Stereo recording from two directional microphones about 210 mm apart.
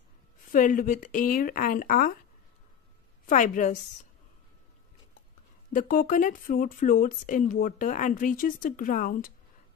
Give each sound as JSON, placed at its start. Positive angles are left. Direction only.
{"t": 0.5, "sound": "speech", "side_deg": 40}
{"t": 3.3, "sound": "speech", "side_deg": 35}
{"t": 5.7, "sound": "speech", "side_deg": 40}